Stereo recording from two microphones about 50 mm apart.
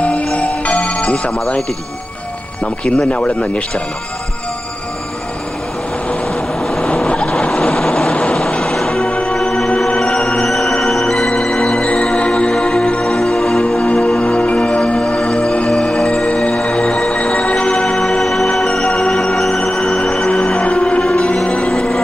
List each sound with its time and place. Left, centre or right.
0.0 s music: left
2.6 s speech: left
7.1 s vehicle: left
8.5 s music: centre
9.0 s music: left
17.6 s music: centre
18.8 s music: centre
19.3 s music: centre; by 21.0 s left
21.0 s music: centre